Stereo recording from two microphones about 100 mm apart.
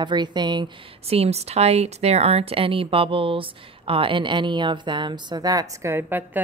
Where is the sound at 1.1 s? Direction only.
90° right; by 5.9 s 40° right (ahead or behind).